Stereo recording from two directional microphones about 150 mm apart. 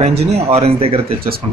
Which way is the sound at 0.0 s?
45° right (ahead or behind).